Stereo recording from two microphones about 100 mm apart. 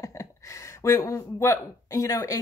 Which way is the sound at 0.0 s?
30° left (ahead or behind).